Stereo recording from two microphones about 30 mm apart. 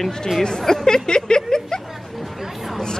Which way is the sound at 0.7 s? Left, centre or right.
Centre.